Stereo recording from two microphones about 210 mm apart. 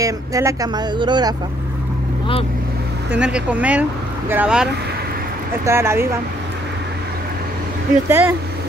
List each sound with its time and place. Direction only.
0.0 s speech: 15° right (ahead or behind)
3.1 s speech: 5° right (ahead or behind)
5.7 s speech: 10° right (ahead or behind)
8.1 s speech: 10° right (ahead or behind)